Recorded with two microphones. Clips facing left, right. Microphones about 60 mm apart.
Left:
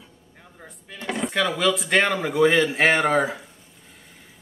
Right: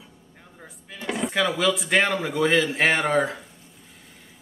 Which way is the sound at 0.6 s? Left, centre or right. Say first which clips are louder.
Even; centre.